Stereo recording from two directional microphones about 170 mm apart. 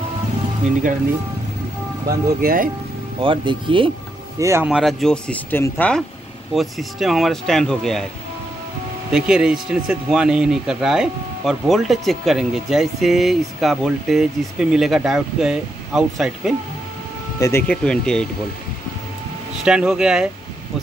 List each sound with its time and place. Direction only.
2.0 s speech: 60° right (ahead or behind)
3.2 s speech: 30° right (ahead or behind)
4.4 s speech: 15° right (ahead or behind)
4.6 s speech: centre (ahead or behind)
9.1 s speech: 5° right (ahead or behind)
17.4 s speech: 15° left (ahead or behind)
19.6 s speech: 5° right (ahead or behind)